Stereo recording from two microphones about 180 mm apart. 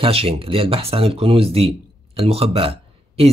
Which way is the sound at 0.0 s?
30° right (ahead or behind).